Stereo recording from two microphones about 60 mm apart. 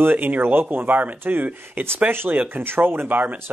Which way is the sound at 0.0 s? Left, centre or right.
Right.